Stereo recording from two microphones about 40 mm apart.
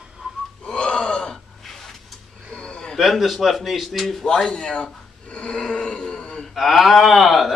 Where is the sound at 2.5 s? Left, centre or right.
Left.